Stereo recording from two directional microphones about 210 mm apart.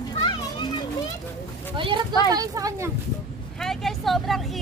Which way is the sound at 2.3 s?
15° right (ahead or behind).